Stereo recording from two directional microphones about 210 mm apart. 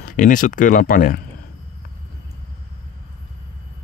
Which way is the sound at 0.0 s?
40° left (ahead or behind).